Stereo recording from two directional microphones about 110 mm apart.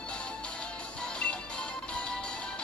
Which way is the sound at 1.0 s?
10° left (ahead or behind).